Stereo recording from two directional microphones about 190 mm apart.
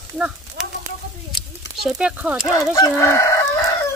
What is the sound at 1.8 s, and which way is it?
Speech, 5° right (ahead or behind).